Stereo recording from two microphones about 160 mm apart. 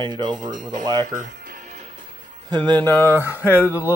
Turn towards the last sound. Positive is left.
turn(degrees=-15)  # may be behind; listen again after turning